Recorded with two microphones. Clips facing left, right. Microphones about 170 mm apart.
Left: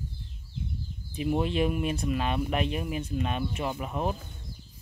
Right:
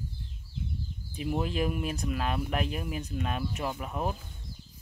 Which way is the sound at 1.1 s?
5° left (ahead or behind).